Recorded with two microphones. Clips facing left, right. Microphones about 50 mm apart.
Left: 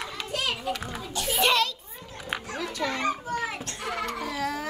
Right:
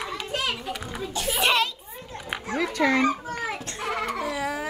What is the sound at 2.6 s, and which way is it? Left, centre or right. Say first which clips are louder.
Fowl: right 10 dB; right.